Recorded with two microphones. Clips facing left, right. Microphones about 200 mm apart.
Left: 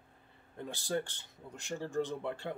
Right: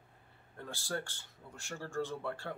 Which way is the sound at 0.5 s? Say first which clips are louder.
Left 4 dB; 20° left (ahead or behind).